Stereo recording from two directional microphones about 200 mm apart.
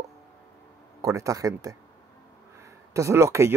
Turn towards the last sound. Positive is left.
turn(degrees=-15)  # may be behind; listen again after turning